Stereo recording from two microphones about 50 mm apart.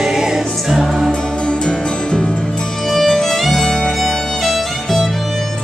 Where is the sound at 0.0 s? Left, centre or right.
Centre.